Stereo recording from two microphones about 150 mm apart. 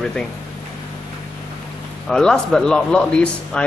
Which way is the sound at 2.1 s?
5° left (ahead or behind).